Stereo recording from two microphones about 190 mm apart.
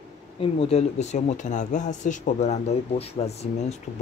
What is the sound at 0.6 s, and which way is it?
Speech, 30° left (ahead or behind).